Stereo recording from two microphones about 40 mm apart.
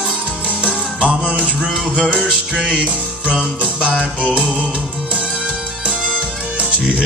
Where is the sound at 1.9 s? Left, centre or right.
Left.